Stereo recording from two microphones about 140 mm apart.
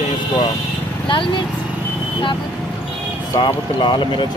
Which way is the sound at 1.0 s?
35° left (ahead or behind).